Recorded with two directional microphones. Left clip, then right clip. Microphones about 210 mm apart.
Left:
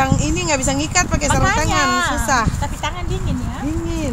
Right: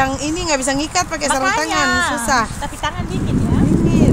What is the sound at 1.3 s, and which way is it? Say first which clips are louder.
Speech: right 2 dB; 20° left (ahead or behind).